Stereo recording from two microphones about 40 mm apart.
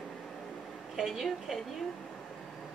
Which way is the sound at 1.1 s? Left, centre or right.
Centre.